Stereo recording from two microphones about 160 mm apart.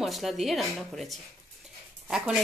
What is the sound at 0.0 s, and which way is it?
Speech, centre (ahead or behind).